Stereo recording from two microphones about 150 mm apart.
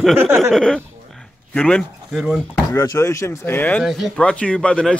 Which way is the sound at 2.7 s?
20° left (ahead or behind).